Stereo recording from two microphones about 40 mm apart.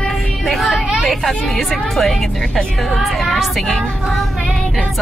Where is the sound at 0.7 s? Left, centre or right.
Right.